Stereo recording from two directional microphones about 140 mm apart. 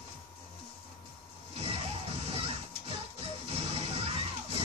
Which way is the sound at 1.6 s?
45° right (ahead or behind).